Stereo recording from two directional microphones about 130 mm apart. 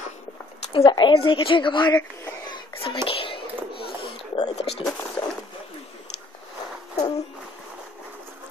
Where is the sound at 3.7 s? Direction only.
40° left (ahead or behind).